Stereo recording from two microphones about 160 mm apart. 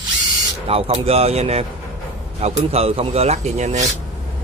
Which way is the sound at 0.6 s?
40° right (ahead or behind).